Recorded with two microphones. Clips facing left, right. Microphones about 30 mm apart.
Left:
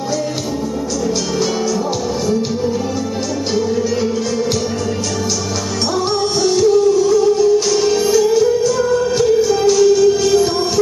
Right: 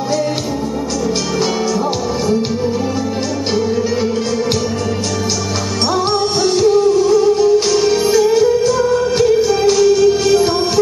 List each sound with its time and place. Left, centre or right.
6.4 s music: right